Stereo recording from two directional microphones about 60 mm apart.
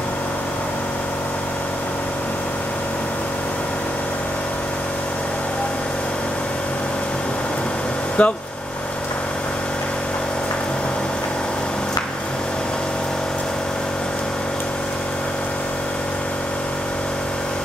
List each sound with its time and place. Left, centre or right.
8.2 s speech: centre